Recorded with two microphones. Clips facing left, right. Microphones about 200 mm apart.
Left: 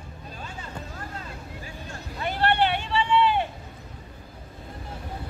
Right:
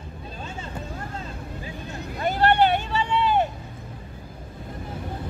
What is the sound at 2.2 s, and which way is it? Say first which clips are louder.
Vehicle: right 4 dB; 45° right (ahead or behind).